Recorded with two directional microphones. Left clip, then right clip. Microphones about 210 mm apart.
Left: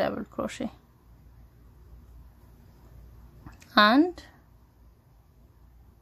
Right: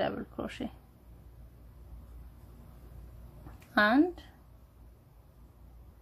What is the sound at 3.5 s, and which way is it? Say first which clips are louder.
Speech: left 6 dB; 20° left (ahead or behind).